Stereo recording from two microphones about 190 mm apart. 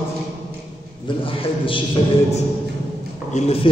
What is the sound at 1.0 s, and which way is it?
Speech, 30° left (ahead or behind).